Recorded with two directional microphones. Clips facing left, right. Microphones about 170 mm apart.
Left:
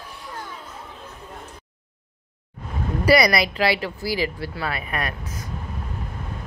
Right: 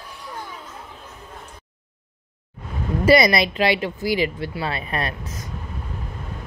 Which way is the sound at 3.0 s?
25° right (ahead or behind).